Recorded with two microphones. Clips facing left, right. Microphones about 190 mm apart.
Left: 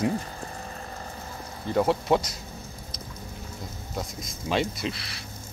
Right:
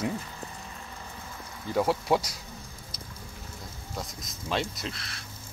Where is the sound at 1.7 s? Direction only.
5° right (ahead or behind).